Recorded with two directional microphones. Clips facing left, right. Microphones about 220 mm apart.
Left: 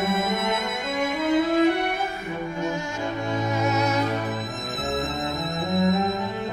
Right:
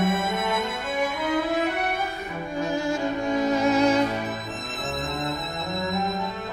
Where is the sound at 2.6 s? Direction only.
35° right (ahead or behind).